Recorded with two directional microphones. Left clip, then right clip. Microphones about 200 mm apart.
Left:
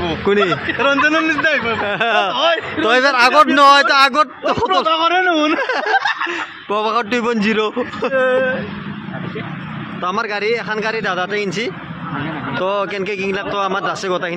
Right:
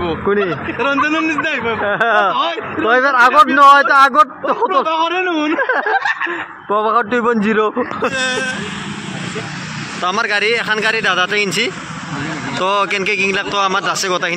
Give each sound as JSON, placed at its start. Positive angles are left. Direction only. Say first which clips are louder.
{"t": 0.0, "sound": "speech", "louder": "left 1 dB", "side_deg": 15}
{"t": 2.3, "sound": "a man's voice", "louder": "left 2 dB", "side_deg": 30}
{"t": 2.8, "sound": "speech", "louder": "right 2 dB", "side_deg": 15}
{"t": 4.8, "sound": "speech", "louder": "left 2 dB", "side_deg": 25}
{"t": 8.1, "sound": "speech", "louder": "left 3 dB", "side_deg": 40}
{"t": 10.0, "sound": "a man's voice", "louder": "right 3 dB", "side_deg": 0}